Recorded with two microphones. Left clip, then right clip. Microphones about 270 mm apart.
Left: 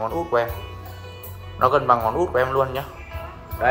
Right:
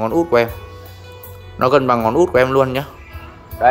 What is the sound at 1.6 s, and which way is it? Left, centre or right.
A man's voice, right.